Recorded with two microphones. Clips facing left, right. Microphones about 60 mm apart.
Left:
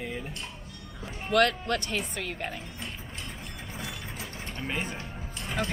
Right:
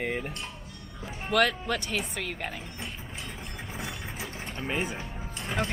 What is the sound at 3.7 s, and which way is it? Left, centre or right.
Music, centre.